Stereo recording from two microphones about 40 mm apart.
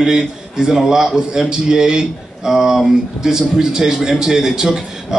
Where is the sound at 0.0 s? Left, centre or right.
Centre.